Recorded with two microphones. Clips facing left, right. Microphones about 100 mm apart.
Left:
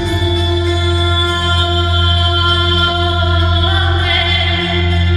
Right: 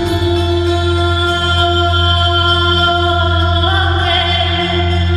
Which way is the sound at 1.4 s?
40° right (ahead or behind).